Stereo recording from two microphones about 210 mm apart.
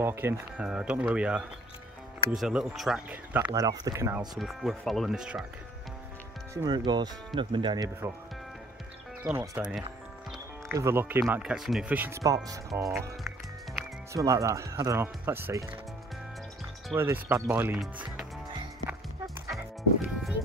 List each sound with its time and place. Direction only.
0.0 s speech: 10° right (ahead or behind)
4.4 s speech: centre (ahead or behind)
6.5 s speech: 20° right (ahead or behind)
9.2 s speech: 10° right (ahead or behind)
10.7 s speech: 10° right (ahead or behind)
14.1 s speech: 15° right (ahead or behind)
16.9 s speech: 10° right (ahead or behind)
18.9 s music: 5° right (ahead or behind)